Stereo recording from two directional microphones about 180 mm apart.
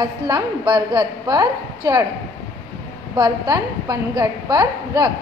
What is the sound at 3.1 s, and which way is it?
A woman's voice, 20° right (ahead or behind).